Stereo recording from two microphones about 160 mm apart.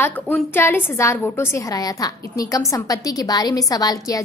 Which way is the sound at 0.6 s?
15° left (ahead or behind).